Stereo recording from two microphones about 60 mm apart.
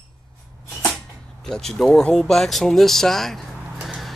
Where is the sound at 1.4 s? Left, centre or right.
Centre.